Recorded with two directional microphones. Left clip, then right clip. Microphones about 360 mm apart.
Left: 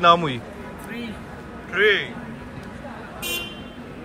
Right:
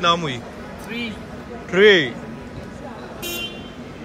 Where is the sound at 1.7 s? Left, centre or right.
Centre.